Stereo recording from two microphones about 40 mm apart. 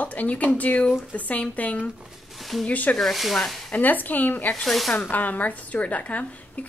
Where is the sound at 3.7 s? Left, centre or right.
Left.